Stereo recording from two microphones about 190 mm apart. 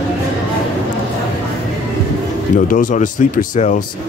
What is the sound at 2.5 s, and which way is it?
Speech, 45° left (ahead or behind).